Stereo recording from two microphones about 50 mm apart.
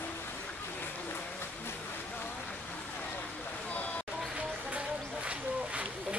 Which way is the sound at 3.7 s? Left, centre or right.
Left.